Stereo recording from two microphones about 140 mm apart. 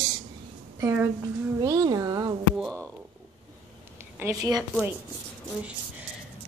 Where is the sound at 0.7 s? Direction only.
20° right (ahead or behind).